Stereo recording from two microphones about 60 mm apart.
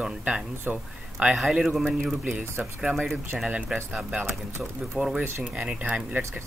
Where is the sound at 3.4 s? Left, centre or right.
Right.